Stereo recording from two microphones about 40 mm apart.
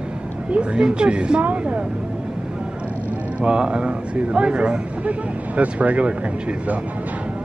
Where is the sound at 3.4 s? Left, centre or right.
Right.